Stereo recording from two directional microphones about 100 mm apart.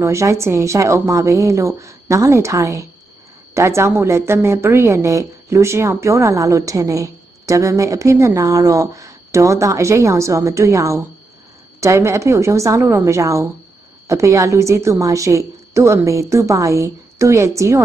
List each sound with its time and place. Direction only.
0.0 s a woman's voice: 30° right (ahead or behind)